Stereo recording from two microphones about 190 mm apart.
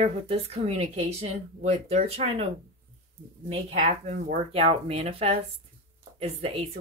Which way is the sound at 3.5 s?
35° right (ahead or behind).